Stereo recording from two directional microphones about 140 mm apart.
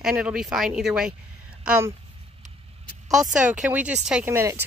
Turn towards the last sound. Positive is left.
turn(degrees=-15)  # may be behind; listen again after turning